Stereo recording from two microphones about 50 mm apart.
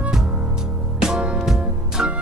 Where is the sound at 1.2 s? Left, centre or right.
Right.